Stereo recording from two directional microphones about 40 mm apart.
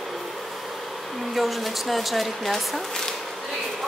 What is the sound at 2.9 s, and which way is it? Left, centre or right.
Bee, centre.